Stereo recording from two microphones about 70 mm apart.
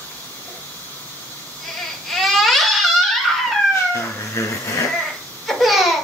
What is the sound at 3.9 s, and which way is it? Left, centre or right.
Cat, left.